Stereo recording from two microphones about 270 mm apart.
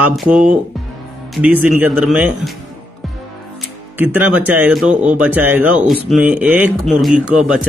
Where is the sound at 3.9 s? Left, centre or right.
Centre.